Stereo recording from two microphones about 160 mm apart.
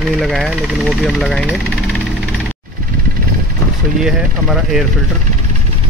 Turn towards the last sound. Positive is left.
turn(degrees=0)  # may be behind; listen again after turning